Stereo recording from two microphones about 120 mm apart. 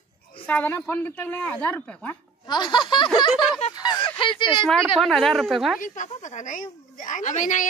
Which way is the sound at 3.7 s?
35° left (ahead or behind).